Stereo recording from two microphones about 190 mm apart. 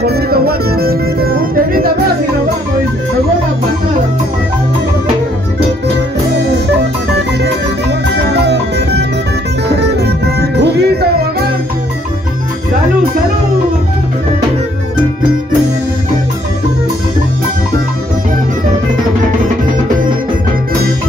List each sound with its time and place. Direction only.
0.0 s music: 55° right (ahead or behind)
6.8 s music: 60° right (ahead or behind)